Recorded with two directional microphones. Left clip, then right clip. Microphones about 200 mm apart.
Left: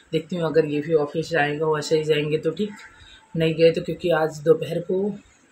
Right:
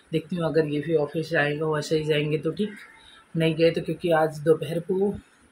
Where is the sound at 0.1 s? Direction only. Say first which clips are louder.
Left 3 dB; 5° left (ahead or behind).